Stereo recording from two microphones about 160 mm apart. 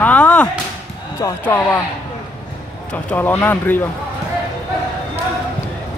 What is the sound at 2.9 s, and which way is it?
Speech, 10° left (ahead or behind).